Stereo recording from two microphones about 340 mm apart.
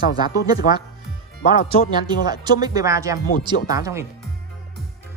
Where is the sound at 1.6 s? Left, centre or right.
Centre.